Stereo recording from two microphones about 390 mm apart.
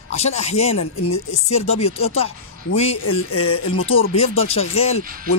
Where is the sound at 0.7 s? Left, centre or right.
Left.